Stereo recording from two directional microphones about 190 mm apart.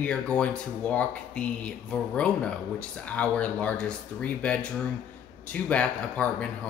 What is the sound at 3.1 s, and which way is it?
Speech, 5° left (ahead or behind).